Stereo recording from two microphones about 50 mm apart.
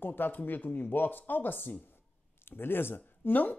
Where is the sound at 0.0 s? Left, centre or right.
Left.